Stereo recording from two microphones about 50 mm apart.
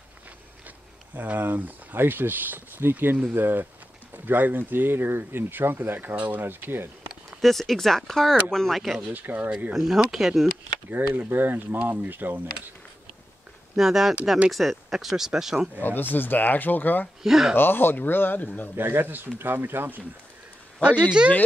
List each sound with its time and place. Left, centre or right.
1.1 s speech: right
6.1 s speech: right
6.4 s speech: right
7.4 s speech: centre
9.1 s speech: right
9.7 s speech: centre
10.9 s speech: right
13.7 s speech: centre
15.8 s speech: left
17.2 s speech: centre
17.6 s speech: left
18.8 s speech: right
21.2 s speech: right